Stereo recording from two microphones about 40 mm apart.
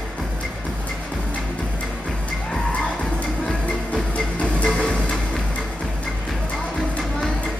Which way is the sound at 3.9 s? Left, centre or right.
Left.